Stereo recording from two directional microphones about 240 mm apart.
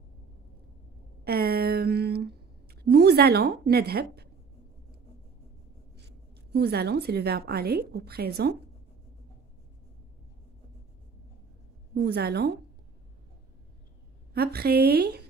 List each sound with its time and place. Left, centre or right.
1.2 s speech: right
5.9 s a woman's voice: right
11.9 s a woman's voice: right
14.3 s a woman's voice: right